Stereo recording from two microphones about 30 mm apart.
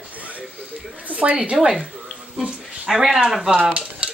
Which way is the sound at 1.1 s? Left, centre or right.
Right.